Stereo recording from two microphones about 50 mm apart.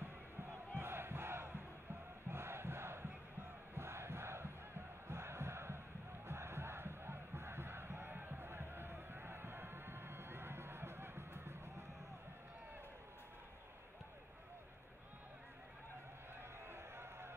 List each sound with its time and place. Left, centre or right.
0.0 s battle cry: right
0.7 s crowd: right
5.0 s music: right
16.3 s run: right